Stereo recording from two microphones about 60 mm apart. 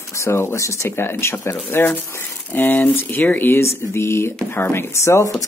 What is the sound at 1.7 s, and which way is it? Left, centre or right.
Speech, left.